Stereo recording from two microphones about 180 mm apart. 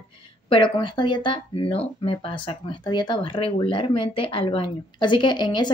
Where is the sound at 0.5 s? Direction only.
25° left (ahead or behind).